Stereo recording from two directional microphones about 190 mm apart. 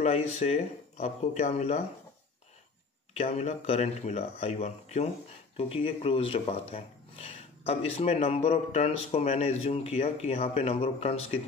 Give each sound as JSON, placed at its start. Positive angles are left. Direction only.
{"t": 0.0, "sound": "speech", "side_deg": 35}
{"t": 3.3, "sound": "speech", "side_deg": 35}